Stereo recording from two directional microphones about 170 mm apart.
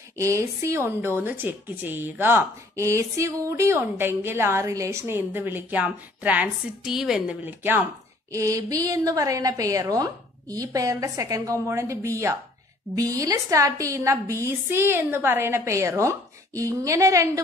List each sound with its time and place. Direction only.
0.2 s a woman's voice: 15° right (ahead or behind)